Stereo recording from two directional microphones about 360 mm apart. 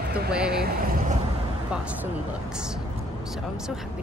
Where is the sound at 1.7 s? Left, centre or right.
Centre.